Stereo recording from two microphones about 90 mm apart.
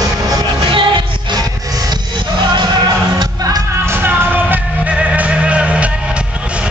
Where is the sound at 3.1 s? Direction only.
45° right (ahead or behind).